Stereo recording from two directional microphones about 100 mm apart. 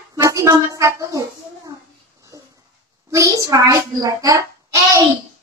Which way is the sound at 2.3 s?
35° right (ahead or behind).